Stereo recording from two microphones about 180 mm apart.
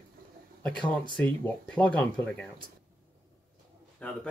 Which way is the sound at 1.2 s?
5° left (ahead or behind).